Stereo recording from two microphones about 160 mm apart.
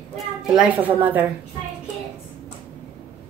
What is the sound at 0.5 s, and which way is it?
Speech, 10° right (ahead or behind).